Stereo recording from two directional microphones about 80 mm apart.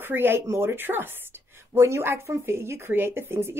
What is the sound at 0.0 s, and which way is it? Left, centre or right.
Speech, right.